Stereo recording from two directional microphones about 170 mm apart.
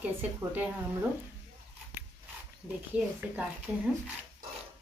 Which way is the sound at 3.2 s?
5° right (ahead or behind).